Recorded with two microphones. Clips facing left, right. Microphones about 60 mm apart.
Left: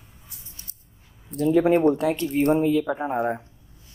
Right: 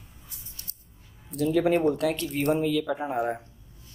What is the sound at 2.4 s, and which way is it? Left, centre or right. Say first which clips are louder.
Speech: left 5 dB; left.